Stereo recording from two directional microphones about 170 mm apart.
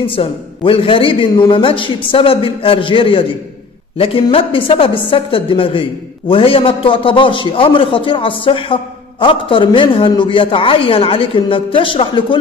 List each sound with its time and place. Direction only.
0.0 s a woman's voice: 30° left (ahead or behind)